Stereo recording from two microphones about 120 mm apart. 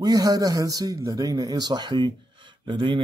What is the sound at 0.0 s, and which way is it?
Speech, 35° right (ahead or behind).